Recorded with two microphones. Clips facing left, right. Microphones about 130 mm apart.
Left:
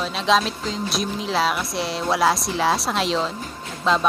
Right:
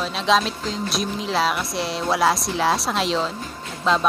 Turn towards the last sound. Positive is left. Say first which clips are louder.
# even
turn(degrees=0)  # may be behind; listen again after turning